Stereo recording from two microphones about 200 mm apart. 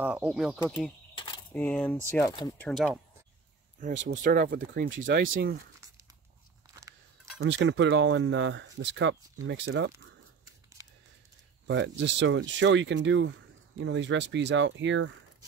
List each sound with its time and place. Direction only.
0.0 s speech: 5° right (ahead or behind)
1.1 s a sound: 25° left (ahead or behind)
1.5 s speech: 5° left (ahead or behind)
2.6 s speech: centre (ahead or behind)
3.8 s speech: 40° right (ahead or behind)
4.8 s speech: 75° right (ahead or behind)
5.1 s speech: 45° right (ahead or behind)
7.3 s speech: 65° right (ahead or behind)
11.6 s speech: 65° right (ahead or behind)